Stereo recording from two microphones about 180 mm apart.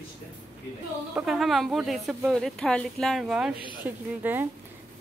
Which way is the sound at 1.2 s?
Centre (ahead or behind).